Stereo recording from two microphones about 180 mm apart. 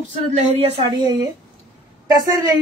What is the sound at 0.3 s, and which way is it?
Speech, 35° right (ahead or behind).